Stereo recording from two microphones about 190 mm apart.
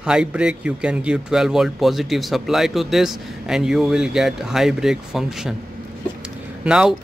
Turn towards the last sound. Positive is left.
turn(degrees=-5)  # may be behind; listen again after turning